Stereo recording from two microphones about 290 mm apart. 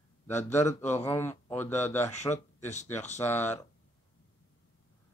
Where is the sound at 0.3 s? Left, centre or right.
Centre.